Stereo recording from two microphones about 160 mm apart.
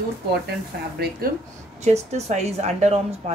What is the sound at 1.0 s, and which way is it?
Speech, 70° right (ahead or behind).